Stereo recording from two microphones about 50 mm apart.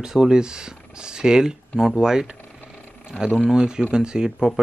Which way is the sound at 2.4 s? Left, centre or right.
Left.